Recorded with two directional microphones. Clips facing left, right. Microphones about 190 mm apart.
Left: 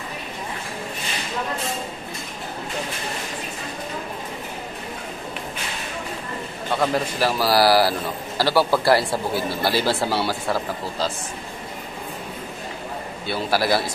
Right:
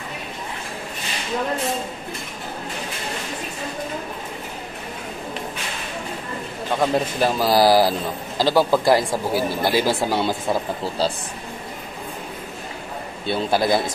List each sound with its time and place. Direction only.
6.7 s speech: 15° right (ahead or behind)
13.3 s speech: 20° right (ahead or behind)